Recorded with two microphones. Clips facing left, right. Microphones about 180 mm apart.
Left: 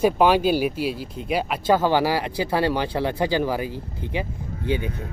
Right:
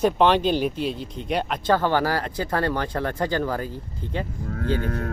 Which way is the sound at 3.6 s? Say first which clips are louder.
Left 2 dB; 75° left (ahead or behind).